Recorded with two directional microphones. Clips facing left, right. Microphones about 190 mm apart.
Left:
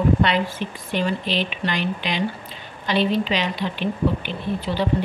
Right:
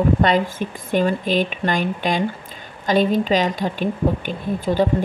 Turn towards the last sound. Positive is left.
turn(degrees=-45)  # may be behind; listen again after turning